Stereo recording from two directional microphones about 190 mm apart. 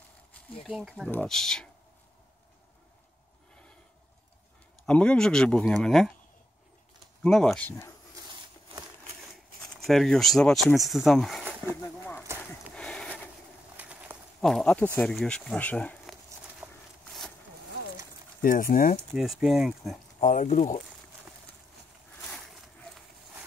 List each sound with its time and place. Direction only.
0.7 s speech: centre (ahead or behind)
4.8 s speech: 5° left (ahead or behind)
7.2 s speech: 5° left (ahead or behind)
9.8 s speech: centre (ahead or behind)
11.7 s speech: 15° left (ahead or behind)
12.7 s a sound: 5° left (ahead or behind)
13.7 s a sound: 10° right (ahead or behind)
14.4 s speech: 5° left (ahead or behind)
17.0 s a sound: centre (ahead or behind)
18.4 s speech: 45° left (ahead or behind)
19.1 s speech: centre (ahead or behind)
20.2 s speech: 40° left (ahead or behind)